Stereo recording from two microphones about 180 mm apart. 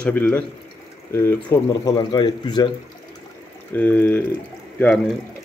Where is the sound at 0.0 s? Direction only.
10° left (ahead or behind).